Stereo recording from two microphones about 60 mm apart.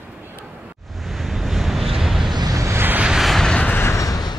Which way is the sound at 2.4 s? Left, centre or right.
Right.